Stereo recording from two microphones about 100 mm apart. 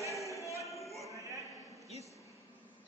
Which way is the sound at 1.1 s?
35° right (ahead or behind).